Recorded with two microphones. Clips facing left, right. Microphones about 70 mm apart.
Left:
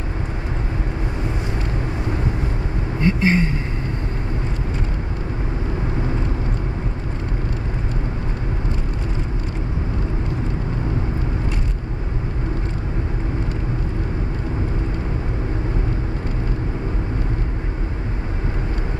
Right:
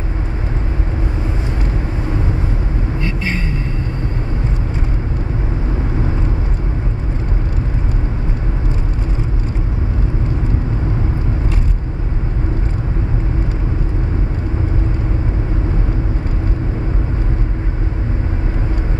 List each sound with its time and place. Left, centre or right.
3.0 s vehicle: left